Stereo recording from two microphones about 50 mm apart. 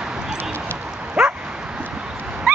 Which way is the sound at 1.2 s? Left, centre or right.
Centre.